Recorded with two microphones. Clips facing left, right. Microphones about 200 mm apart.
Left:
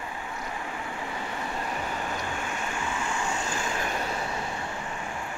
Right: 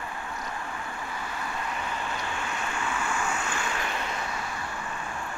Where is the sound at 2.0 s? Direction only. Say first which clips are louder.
Left 1 dB; 15° left (ahead or behind).